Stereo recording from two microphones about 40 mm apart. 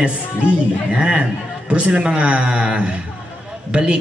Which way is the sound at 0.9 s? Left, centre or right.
Right.